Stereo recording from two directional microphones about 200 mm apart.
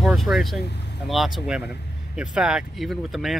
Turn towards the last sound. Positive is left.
turn(degrees=0)  # may be behind; listen again after turning